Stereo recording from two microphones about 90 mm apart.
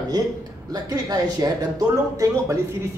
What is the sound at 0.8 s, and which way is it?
Speech, 45° right (ahead or behind).